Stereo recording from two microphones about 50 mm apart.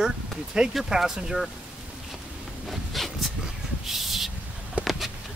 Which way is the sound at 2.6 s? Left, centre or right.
Centre.